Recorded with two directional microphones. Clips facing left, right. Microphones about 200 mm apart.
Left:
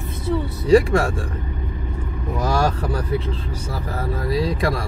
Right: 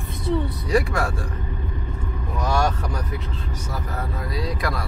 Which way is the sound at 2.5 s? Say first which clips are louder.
Left 1 dB; 35° left (ahead or behind).